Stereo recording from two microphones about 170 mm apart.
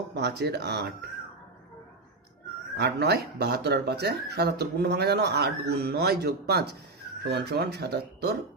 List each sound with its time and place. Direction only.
0.1 s speech: 75° right (ahead or behind)
2.8 s speech: 75° right (ahead or behind)